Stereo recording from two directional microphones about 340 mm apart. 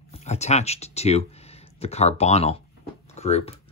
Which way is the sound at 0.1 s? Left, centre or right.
Centre.